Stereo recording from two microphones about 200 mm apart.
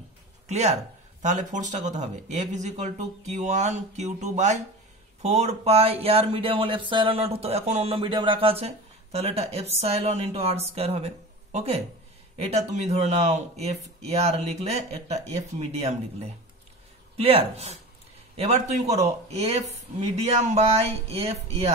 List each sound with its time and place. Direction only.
0.5 s speech: 35° right (ahead or behind)
14.7 s speech: 35° right (ahead or behind)